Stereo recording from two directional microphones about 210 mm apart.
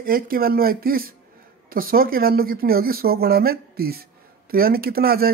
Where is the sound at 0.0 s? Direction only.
45° right (ahead or behind).